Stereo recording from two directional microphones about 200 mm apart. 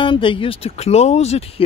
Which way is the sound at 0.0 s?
25° left (ahead or behind).